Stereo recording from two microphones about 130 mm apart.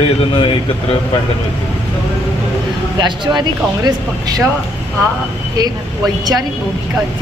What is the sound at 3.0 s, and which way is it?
A woman's voice, 35° right (ahead or behind).